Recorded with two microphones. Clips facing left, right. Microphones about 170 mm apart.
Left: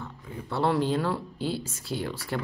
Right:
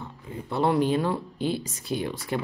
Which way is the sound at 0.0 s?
15° right (ahead or behind).